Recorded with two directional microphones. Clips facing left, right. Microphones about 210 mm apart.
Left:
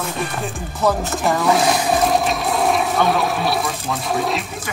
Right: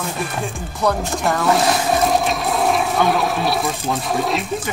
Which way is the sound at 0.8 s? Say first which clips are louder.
Left 1 dB; centre (ahead or behind).